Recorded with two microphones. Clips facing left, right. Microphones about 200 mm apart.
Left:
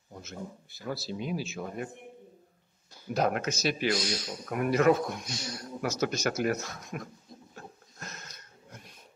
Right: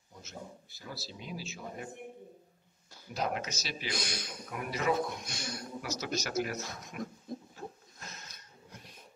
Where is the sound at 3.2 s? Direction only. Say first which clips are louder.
Left 7 dB; 55° left (ahead or behind).